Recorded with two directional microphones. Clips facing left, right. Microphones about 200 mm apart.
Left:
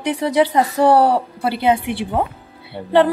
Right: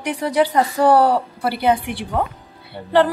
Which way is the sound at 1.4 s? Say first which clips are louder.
Left 1 dB; 20° left (ahead or behind).